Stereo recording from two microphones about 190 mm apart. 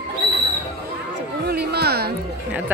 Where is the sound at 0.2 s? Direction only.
65° right (ahead or behind).